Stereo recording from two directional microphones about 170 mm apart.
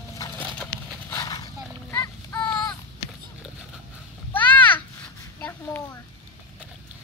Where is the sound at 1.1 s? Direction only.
20° left (ahead or behind).